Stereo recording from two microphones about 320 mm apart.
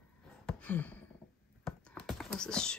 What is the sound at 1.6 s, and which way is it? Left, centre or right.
Whispering, centre.